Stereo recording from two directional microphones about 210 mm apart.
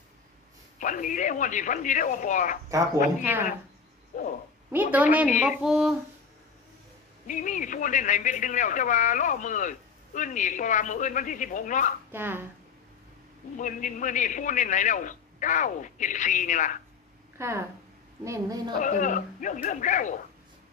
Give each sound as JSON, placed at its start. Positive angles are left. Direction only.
{"t": 0.7, "sound": "speech", "side_deg": 40}
{"t": 4.6, "sound": "speech", "side_deg": -10}
{"t": 7.2, "sound": "speech", "side_deg": 35}
{"t": 12.1, "sound": "speech", "side_deg": -10}
{"t": 13.6, "sound": "speech", "side_deg": 35}
{"t": 17.4, "sound": "speech", "side_deg": -10}
{"t": 18.8, "sound": "speech", "side_deg": 35}